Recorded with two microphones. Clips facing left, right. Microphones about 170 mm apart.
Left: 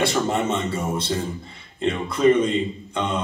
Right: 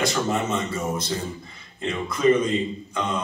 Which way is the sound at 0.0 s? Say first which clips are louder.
Left 2 dB; 30° left (ahead or behind).